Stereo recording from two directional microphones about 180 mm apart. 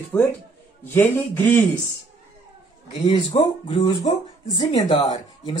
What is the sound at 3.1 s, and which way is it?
Speech, 30° left (ahead or behind).